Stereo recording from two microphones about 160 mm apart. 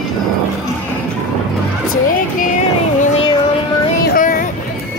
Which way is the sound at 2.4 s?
50° left (ahead or behind).